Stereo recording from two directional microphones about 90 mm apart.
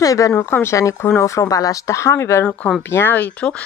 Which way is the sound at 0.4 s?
25° left (ahead or behind).